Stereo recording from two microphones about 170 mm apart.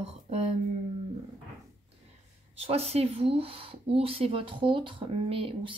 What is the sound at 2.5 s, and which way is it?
Speech, 35° right (ahead or behind).